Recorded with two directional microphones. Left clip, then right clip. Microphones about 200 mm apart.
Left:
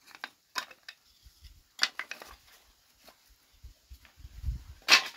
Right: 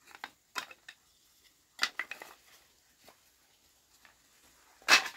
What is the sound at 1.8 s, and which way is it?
Dishes, 5° left (ahead or behind).